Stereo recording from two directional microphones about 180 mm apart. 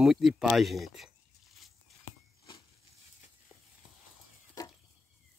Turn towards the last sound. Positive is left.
turn(degrees=20)  # may be behind; listen again after turning